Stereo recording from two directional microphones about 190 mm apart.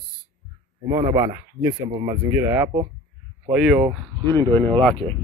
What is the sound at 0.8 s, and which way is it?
Speech, 15° right (ahead or behind).